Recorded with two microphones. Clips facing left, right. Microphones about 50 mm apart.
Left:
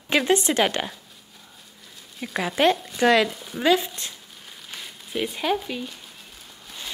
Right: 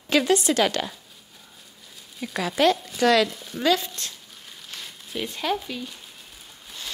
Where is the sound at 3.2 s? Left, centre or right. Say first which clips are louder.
Left 1 dB; centre.